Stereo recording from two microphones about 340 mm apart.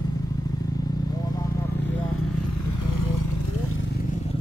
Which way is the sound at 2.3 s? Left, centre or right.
Left.